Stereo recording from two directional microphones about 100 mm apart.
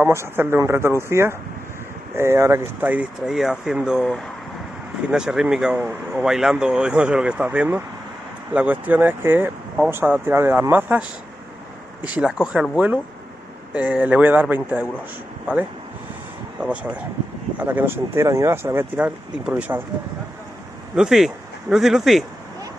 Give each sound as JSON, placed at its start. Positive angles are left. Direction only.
{"t": 0.0, "sound": "speech", "side_deg": -25}
{"t": 3.3, "sound": "speech", "side_deg": -5}
{"t": 17.6, "sound": "speech", "side_deg": -20}
{"t": 20.9, "sound": "speech", "side_deg": -5}